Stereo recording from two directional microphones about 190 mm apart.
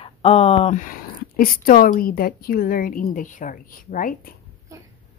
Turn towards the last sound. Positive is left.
turn(degrees=45)  # may be behind; listen again after turning